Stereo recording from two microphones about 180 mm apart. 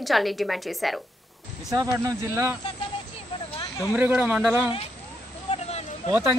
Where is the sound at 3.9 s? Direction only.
10° right (ahead or behind).